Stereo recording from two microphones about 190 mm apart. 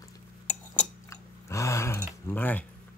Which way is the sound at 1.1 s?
15° left (ahead or behind).